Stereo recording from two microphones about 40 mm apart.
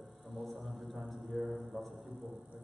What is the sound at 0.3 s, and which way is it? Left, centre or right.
Music, centre.